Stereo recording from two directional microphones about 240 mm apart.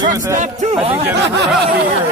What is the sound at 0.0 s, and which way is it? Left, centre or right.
Speech, centre.